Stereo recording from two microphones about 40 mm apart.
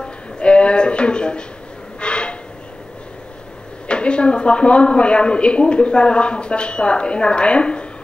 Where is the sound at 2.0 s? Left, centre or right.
Left.